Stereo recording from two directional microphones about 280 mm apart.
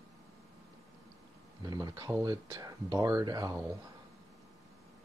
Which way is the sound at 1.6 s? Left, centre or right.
Centre.